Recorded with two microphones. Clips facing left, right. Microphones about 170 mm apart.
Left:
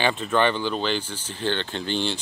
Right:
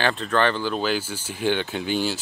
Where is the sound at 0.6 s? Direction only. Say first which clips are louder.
Right 1 dB; 5° right (ahead or behind).